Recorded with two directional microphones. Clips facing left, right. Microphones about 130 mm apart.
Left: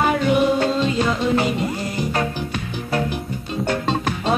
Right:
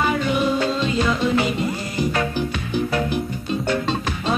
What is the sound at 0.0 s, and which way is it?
Music, 55° left (ahead or behind).